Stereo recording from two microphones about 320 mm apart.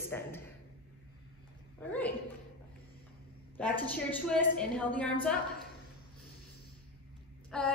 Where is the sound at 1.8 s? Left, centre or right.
Centre.